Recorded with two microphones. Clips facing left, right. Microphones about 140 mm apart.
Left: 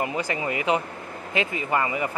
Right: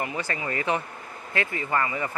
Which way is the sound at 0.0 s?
20° left (ahead or behind).